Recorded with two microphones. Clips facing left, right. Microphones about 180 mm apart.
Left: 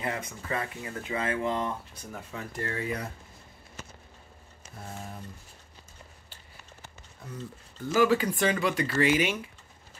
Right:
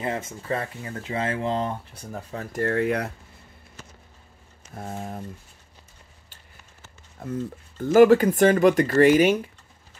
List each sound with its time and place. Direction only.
0.0 s speech: 25° right (ahead or behind); by 3.1 s 65° right (ahead or behind)
4.7 s speech: 50° right (ahead or behind)
7.2 s speech: 50° right (ahead or behind)